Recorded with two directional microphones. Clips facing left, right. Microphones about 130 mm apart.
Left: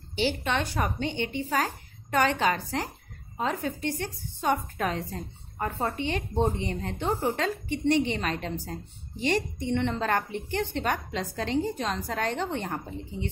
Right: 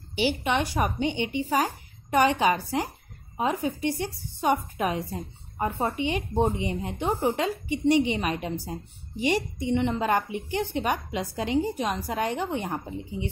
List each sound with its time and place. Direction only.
0.1 s a woman's voice: 15° right (ahead or behind)
5.9 s a woman's voice: 15° right (ahead or behind)